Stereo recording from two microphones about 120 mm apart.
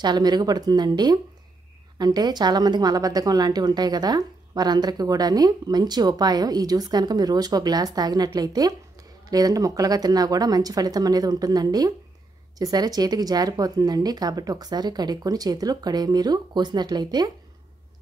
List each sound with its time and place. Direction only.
0.0 s a woman's voice: 35° right (ahead or behind)